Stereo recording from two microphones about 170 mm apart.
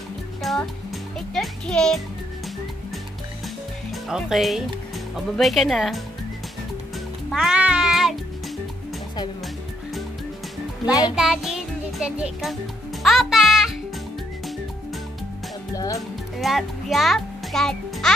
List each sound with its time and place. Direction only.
0.4 s music: centre (ahead or behind)
3.9 s speech: centre (ahead or behind)
7.2 s music: 5° right (ahead or behind)
10.9 s music: 20° left (ahead or behind)
11.1 s music: 5° right (ahead or behind)
15.7 s music: 20° left (ahead or behind)
16.3 s a child's voice: centre (ahead or behind)